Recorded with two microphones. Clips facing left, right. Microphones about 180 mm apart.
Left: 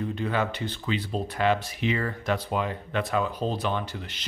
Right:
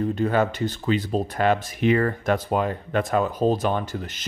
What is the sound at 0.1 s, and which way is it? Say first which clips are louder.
Speech: right 6 dB; 45° right (ahead or behind).